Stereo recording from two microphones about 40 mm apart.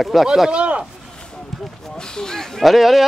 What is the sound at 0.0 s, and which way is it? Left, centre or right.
Speech, centre.